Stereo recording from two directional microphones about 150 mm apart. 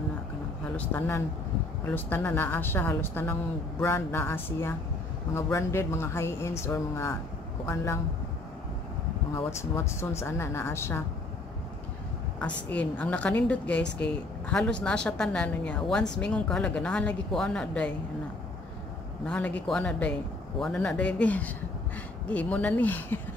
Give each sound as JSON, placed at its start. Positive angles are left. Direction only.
{"t": 0.7, "sound": "a woman's voice", "side_deg": 15}
{"t": 9.3, "sound": "a woman's voice", "side_deg": 20}
{"t": 12.4, "sound": "a woman's voice", "side_deg": 10}
{"t": 19.2, "sound": "a woman's voice", "side_deg": 10}